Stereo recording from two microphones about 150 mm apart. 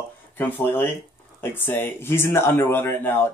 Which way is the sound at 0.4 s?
15° left (ahead or behind).